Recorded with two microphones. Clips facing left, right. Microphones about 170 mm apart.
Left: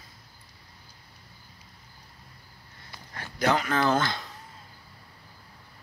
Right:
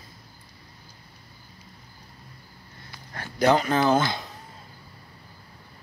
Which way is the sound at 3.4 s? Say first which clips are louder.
Right 5 dB; 25° right (ahead or behind).